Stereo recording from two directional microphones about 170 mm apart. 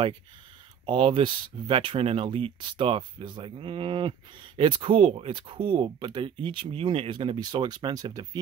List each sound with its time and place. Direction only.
0.8 s speech: 35° right (ahead or behind)